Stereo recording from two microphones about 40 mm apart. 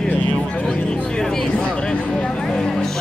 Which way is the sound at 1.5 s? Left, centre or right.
Left.